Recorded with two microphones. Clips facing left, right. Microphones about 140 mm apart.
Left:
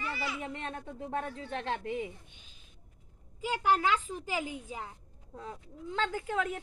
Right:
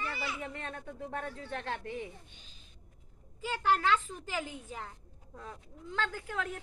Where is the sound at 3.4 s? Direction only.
15° left (ahead or behind).